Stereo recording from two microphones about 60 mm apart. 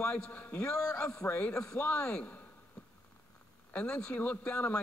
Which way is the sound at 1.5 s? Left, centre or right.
Centre.